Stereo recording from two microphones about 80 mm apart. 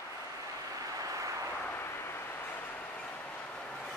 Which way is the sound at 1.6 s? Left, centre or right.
Left.